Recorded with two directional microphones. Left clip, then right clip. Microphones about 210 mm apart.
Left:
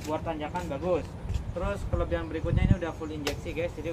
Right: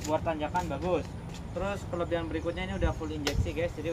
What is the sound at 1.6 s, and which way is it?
Speech, 5° right (ahead or behind).